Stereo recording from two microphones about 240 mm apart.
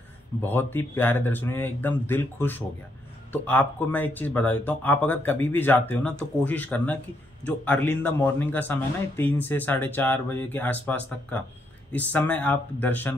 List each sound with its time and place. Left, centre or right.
0.4 s speech: centre